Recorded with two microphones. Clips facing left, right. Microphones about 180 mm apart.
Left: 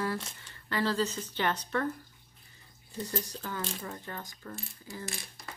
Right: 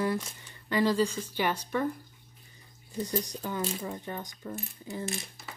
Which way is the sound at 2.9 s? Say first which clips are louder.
Right 4 dB; 20° right (ahead or behind).